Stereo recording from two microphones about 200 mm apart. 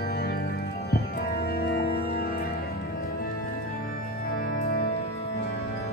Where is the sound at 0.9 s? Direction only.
50° left (ahead or behind).